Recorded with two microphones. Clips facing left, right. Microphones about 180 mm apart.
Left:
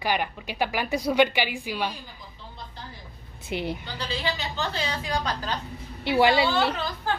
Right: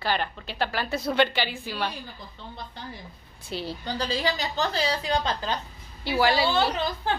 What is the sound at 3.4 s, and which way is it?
Speech, 20° left (ahead or behind).